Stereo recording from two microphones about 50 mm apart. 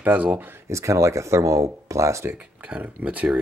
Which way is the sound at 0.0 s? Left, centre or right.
Right.